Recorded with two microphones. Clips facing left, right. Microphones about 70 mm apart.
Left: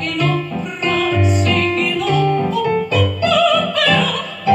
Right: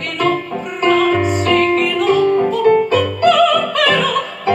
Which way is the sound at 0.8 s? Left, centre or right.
Right.